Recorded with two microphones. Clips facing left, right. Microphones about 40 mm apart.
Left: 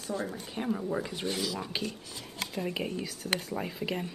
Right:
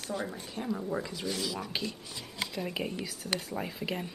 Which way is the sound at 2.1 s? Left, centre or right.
Right.